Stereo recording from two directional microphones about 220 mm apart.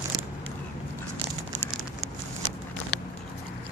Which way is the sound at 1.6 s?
5° right (ahead or behind).